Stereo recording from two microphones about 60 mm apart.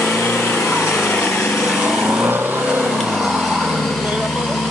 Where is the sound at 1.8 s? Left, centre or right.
Centre.